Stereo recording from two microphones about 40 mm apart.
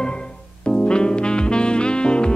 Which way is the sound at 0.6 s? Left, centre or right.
Left.